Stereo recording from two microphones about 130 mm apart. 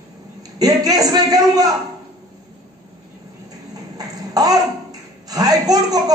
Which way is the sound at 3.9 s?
30° right (ahead or behind).